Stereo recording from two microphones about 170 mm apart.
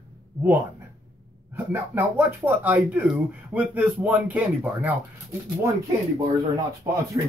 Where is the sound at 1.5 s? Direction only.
15° right (ahead or behind).